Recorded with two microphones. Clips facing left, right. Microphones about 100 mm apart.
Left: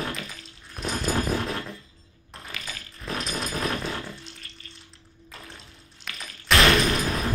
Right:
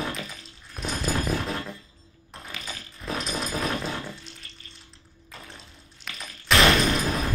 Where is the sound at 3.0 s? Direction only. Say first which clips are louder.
Right 1 dB; centre (ahead or behind).